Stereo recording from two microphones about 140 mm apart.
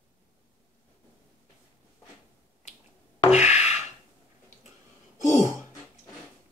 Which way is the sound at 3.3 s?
55° left (ahead or behind).